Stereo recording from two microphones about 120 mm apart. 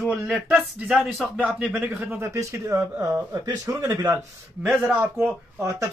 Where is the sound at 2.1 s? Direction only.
25° right (ahead or behind).